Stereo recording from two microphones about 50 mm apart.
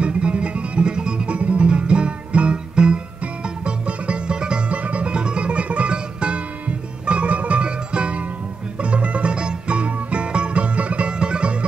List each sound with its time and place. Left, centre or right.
0.0 s music: right